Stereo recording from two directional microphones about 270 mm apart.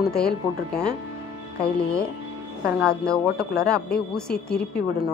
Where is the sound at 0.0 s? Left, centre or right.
Centre.